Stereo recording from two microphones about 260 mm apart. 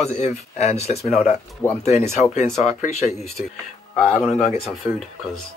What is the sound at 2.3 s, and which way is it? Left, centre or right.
Speech, left.